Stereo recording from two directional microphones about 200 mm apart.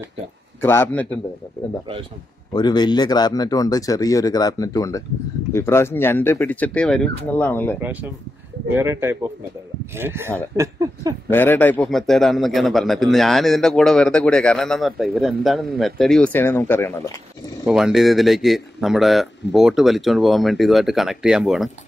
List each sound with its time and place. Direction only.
0.6 s speech: 10° left (ahead or behind)
2.5 s speech: 20° left (ahead or behind)
7.8 s speech: 10° right (ahead or behind)
11.2 s a man's voice: 10° left (ahead or behind)
17.6 s a man's voice: centre (ahead or behind)